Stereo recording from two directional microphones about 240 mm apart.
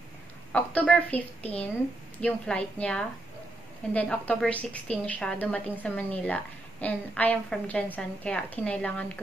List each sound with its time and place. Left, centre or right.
0.5 s a woman's voice: centre